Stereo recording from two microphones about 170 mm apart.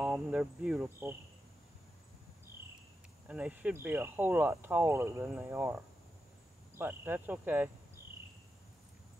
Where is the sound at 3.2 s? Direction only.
5° right (ahead or behind).